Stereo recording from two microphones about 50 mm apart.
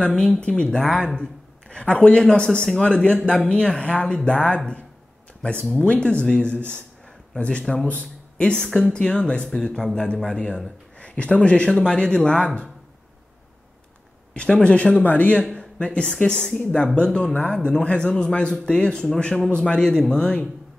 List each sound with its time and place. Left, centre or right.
0.1 s speech: centre
14.3 s speech: left